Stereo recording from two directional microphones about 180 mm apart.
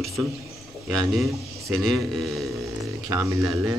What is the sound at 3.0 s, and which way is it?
Speech, 15° right (ahead or behind).